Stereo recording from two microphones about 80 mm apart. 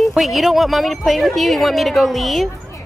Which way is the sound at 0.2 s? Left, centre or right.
Centre.